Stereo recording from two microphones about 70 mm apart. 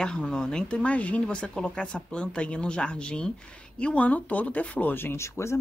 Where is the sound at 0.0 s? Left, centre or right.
Centre.